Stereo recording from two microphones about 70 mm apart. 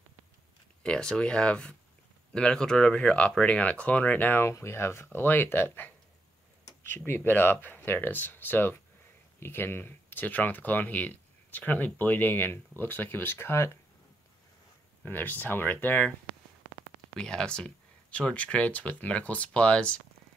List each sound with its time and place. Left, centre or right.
0.8 s speech: centre
4.5 s speech: left
7.1 s speech: left
15.0 s speech: left
17.1 s speech: centre